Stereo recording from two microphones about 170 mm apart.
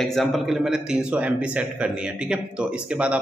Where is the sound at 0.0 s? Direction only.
Centre (ahead or behind).